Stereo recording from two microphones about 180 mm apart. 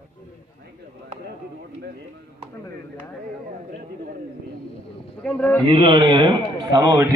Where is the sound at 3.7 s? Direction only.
55° right (ahead or behind).